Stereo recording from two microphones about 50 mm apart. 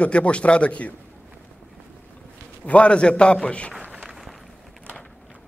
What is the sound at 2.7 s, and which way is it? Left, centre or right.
A man's voice, left.